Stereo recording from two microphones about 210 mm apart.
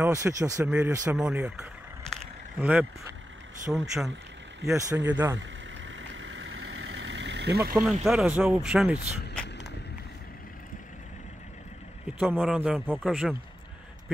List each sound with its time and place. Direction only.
0.0 s speech: 15° right (ahead or behind)
4.6 s speech: 15° right (ahead or behind)
5.9 s vehicle: 60° right (ahead or behind)
7.8 s speech: centre (ahead or behind)
9.3 s a sound: 5° left (ahead or behind)
12.2 s speech: centre (ahead or behind)